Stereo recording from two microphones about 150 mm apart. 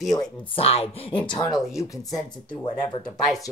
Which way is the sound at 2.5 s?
35° left (ahead or behind).